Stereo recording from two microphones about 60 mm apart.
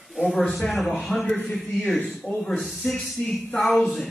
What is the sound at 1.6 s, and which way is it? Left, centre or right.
A man's voice, centre.